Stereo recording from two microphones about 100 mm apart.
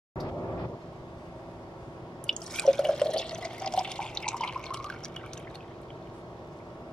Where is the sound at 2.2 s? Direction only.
5° left (ahead or behind).